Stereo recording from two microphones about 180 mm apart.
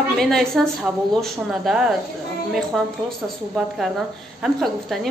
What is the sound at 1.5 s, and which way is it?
Speech, centre (ahead or behind).